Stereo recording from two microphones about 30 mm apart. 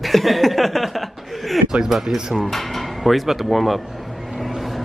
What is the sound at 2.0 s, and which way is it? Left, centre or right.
Speech, right.